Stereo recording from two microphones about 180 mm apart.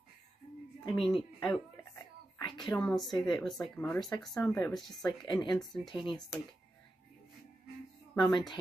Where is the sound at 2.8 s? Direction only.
Centre (ahead or behind).